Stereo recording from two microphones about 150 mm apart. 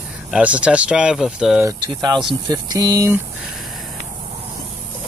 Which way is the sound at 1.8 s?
30° right (ahead or behind).